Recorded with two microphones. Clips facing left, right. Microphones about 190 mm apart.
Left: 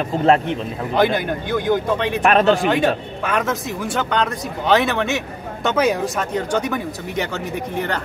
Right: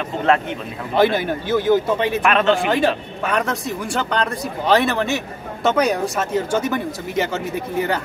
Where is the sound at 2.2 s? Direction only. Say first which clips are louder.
Left 4 dB; 40° left (ahead or behind).